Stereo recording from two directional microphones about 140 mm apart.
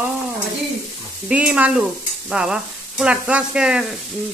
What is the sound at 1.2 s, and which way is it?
Sizzle, 10° right (ahead or behind).